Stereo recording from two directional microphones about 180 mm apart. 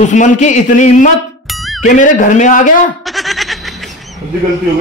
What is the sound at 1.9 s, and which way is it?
A man's voice, 45° left (ahead or behind).